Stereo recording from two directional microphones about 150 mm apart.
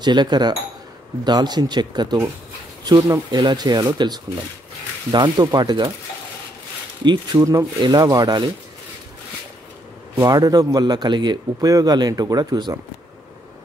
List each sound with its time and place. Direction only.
0.0 s a man's voice: 30° right (ahead or behind)
7.3 s a man's voice: 20° right (ahead or behind)
10.1 s a man's voice: 25° right (ahead or behind)